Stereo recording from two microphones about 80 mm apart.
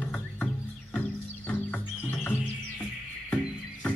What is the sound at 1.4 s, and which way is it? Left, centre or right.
Music, left.